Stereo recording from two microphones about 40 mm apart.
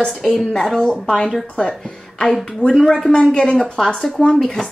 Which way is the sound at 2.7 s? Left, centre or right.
Centre.